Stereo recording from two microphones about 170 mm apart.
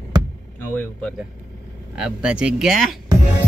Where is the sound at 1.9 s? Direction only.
5° right (ahead or behind).